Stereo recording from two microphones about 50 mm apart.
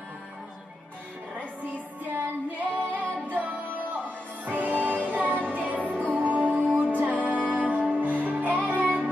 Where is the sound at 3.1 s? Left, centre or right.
Left.